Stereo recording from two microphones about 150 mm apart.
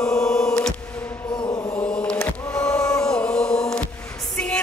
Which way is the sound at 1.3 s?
30° left (ahead or behind).